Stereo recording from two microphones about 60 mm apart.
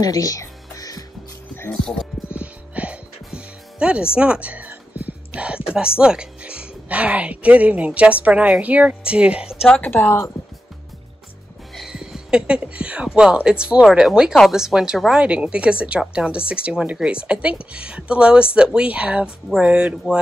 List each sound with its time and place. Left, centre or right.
0.0 s music: left
1.7 s speech: centre
2.3 s music: right
8.5 s speech: right
9.7 s speech: left
11.7 s speech: centre
13.8 s speech: centre